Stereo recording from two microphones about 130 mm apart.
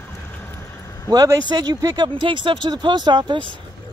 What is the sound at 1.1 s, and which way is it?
Speech, 25° right (ahead or behind).